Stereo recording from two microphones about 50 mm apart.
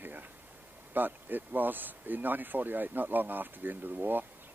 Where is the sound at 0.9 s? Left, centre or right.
Right.